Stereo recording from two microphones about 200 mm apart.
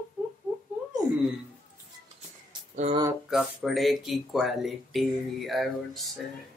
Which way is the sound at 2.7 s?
30° right (ahead or behind).